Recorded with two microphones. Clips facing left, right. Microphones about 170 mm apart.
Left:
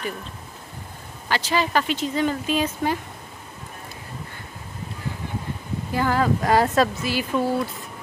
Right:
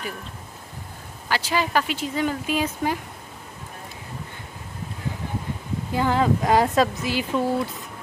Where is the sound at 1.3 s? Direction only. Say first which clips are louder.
Left 1 dB; 10° right (ahead or behind).